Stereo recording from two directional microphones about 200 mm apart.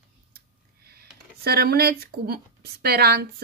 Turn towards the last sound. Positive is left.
turn(degrees=-50)  # may be behind; listen again after turning